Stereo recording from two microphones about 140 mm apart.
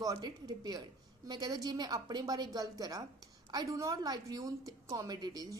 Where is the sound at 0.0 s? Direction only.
30° right (ahead or behind).